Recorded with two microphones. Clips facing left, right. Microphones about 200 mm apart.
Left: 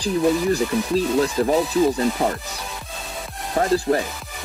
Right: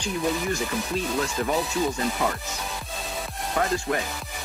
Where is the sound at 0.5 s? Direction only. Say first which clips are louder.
Left 7 dB; 35° left (ahead or behind).